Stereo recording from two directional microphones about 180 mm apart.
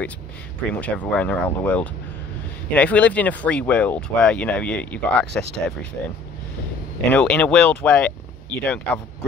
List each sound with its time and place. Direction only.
0.7 s speech: 5° left (ahead or behind)
7.1 s speech: 5° left (ahead or behind)